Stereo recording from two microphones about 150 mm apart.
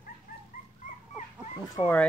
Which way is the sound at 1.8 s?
35° left (ahead or behind).